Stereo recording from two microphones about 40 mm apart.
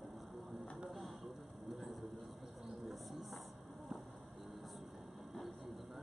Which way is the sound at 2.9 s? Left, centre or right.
Centre.